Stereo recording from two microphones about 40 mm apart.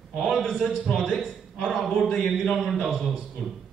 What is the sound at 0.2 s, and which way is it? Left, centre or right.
Speech, centre.